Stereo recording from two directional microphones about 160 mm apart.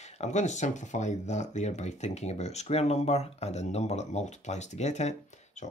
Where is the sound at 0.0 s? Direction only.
45° left (ahead or behind).